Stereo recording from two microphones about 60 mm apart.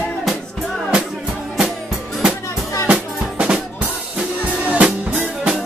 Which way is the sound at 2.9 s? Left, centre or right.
Centre.